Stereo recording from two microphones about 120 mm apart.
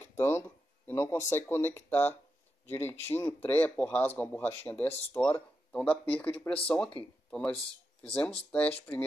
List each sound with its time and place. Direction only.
0.2 s speech: 20° left (ahead or behind)